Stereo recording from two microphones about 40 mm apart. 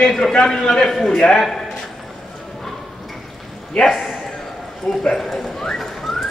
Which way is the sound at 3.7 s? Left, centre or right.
Centre.